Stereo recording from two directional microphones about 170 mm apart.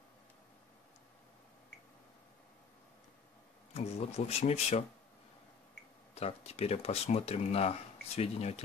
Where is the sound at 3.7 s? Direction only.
40° left (ahead or behind).